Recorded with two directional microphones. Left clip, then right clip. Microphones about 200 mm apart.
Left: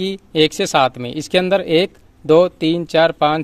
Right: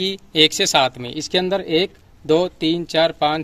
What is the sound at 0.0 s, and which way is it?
Speech, 35° left (ahead or behind).